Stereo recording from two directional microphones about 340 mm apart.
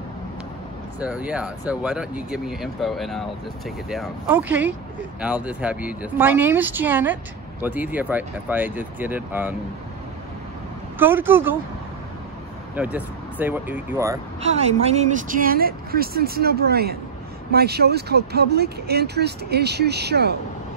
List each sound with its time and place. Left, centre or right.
0.9 s speech: centre
11.0 s speech: centre
12.7 s speech: centre; by 20.3 s right